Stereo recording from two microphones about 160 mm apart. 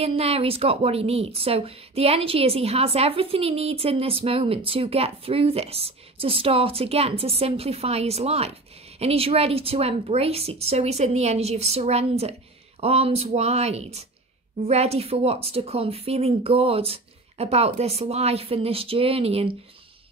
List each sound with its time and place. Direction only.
0.0 s speech: 40° right (ahead or behind)